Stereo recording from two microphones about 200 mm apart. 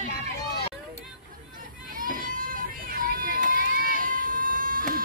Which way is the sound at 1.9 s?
45° right (ahead or behind).